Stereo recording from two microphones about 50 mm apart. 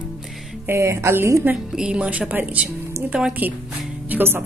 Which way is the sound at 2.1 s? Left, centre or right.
Right.